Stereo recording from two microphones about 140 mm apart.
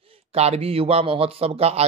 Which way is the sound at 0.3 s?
50° right (ahead or behind).